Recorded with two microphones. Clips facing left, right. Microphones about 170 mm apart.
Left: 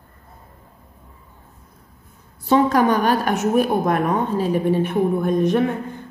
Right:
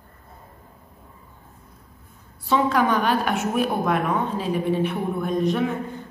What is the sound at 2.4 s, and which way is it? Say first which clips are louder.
A woman's voice: left 4 dB; 45° left (ahead or behind).